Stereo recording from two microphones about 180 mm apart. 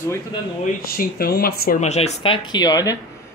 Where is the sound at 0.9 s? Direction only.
55° left (ahead or behind).